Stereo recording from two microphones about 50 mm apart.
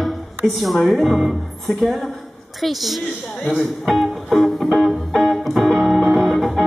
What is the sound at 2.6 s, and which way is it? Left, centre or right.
Music, centre.